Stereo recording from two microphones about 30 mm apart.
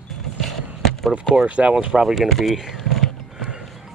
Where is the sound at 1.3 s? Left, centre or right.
Right.